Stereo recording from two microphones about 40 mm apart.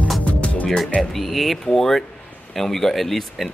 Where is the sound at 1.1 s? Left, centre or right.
Centre.